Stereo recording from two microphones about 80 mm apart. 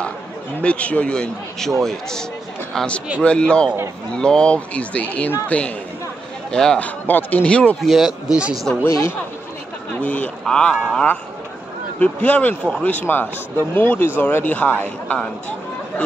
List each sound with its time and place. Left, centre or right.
0.6 s a man's voice: centre
6.5 s a man's voice: centre
6.8 s speech: left
7.8 s a man's voice: centre
8.8 s speech: left
9.9 s a man's voice: centre
12.0 s speech: centre